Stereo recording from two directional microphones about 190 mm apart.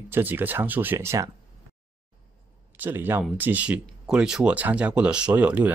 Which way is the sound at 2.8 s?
10° right (ahead or behind).